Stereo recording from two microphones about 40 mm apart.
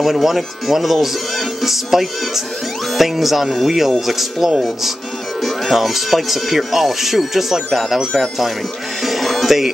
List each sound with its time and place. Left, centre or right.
0.0 s speech: centre
9.0 s music: centre